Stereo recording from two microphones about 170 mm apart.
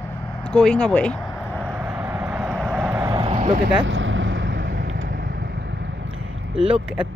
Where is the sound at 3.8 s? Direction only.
90° right.